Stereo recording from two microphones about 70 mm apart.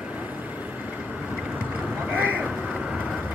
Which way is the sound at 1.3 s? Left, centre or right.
Centre.